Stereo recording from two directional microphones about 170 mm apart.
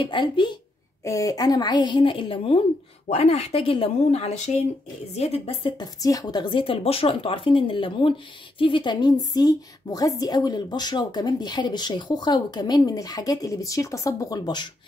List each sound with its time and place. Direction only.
0.0 s a woman's voice: 30° left (ahead or behind)